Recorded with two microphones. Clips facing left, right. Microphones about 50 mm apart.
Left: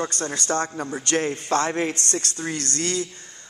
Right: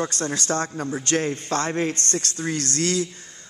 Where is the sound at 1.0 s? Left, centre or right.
Left.